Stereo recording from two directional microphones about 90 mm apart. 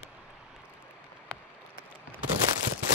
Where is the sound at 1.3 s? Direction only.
5° left (ahead or behind).